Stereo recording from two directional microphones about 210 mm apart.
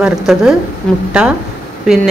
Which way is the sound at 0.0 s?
Centre (ahead or behind).